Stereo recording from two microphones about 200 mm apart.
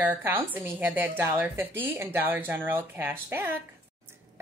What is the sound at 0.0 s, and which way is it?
A woman's voice, 10° right (ahead or behind).